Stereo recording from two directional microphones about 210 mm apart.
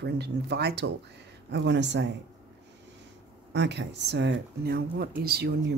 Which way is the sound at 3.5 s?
55° right (ahead or behind).